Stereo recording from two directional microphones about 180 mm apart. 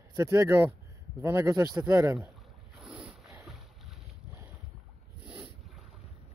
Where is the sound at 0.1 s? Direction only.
15° right (ahead or behind).